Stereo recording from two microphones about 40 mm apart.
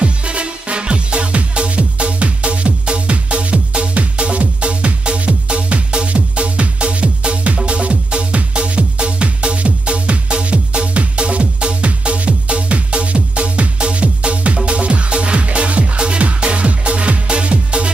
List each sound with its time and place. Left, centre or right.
0.0 s music: right